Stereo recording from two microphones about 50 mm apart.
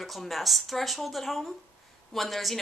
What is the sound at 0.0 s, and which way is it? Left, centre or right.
A woman's voice, centre.